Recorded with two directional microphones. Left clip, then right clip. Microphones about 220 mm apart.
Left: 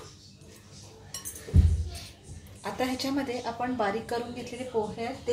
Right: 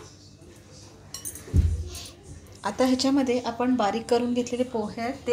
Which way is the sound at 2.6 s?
30° right (ahead or behind).